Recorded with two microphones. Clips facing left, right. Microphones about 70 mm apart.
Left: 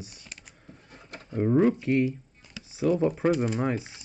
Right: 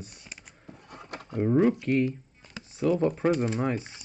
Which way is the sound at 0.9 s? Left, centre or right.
Right.